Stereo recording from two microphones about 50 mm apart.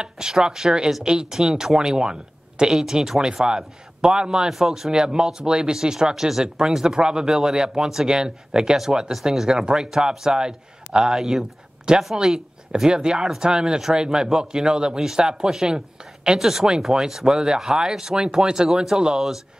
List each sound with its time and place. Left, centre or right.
0.0 s speech: centre